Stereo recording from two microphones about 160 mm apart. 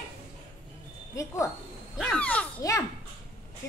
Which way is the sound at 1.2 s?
20° left (ahead or behind).